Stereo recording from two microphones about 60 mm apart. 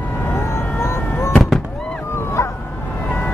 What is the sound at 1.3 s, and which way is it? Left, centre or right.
Fireworks, centre.